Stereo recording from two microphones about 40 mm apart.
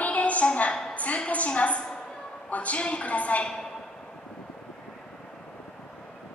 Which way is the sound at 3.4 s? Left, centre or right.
Centre.